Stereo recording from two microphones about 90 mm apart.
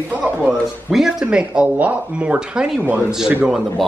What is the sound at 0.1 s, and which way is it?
Speech, 15° right (ahead or behind).